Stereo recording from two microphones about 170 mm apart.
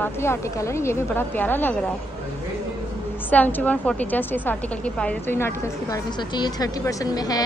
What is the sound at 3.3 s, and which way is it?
A woman's voice, 10° left (ahead or behind).